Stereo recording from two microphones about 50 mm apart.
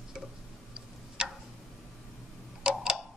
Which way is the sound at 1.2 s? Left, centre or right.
Centre.